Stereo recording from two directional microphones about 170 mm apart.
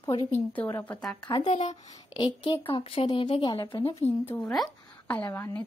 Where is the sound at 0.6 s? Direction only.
10° left (ahead or behind).